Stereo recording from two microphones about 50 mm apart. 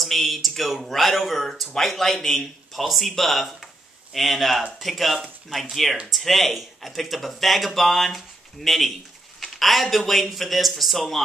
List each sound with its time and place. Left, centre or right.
0.0 s speech: centre